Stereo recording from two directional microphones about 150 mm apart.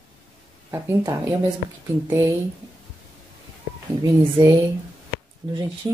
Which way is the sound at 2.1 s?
15° right (ahead or behind).